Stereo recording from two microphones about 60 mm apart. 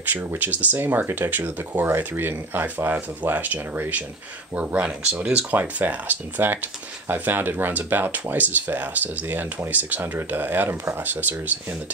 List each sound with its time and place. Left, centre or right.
0.0 s speech: right
4.6 s speech: right
5.5 s speech: right